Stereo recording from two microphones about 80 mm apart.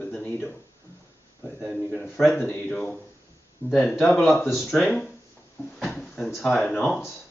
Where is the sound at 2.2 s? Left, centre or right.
Centre.